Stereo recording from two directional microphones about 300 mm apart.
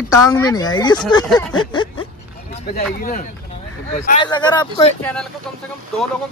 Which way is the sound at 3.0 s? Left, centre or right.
Left.